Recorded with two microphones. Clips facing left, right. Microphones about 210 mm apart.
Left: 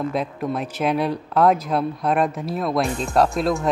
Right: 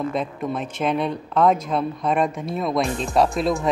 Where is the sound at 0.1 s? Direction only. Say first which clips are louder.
Left 1 dB; 5° left (ahead or behind).